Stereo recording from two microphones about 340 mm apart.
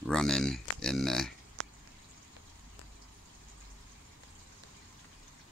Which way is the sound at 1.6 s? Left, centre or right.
Right.